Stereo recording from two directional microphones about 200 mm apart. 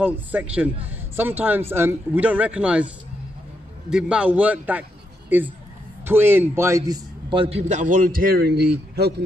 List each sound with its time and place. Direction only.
0.0 s speech: 10° right (ahead or behind)
3.9 s a man's voice: 5° right (ahead or behind); by 9.1 s 55° right (ahead or behind)